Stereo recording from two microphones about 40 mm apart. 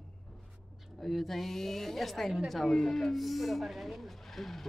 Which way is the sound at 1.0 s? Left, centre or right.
Centre.